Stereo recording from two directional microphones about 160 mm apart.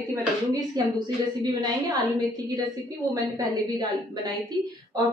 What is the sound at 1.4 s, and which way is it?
Speech, 25° right (ahead or behind).